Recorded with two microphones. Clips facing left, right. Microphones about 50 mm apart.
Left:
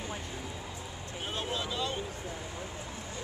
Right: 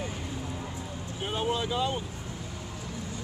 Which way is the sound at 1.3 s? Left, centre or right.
Centre.